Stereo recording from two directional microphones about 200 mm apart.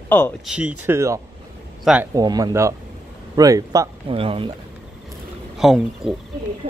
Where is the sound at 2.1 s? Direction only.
20° right (ahead or behind).